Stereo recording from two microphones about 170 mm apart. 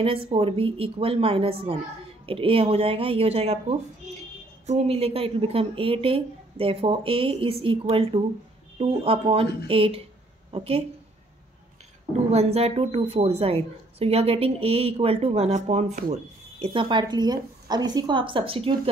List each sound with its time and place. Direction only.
0.0 s a woman's voice: 35° right (ahead or behind)
4.6 s a woman's voice: 35° right (ahead or behind)
12.3 s a woman's voice: 35° right (ahead or behind)